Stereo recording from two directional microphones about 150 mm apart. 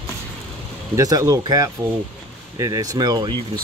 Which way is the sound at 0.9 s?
25° right (ahead or behind).